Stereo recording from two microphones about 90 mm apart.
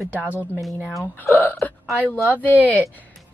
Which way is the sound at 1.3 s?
20° left (ahead or behind).